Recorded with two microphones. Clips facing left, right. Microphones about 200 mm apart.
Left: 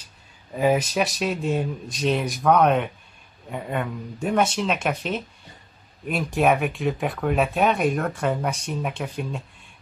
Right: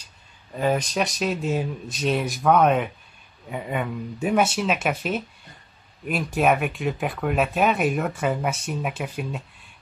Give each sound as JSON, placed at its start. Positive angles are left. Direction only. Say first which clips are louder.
{"t": 0.6, "sound": "speech", "louder": "left 2 dB", "side_deg": 5}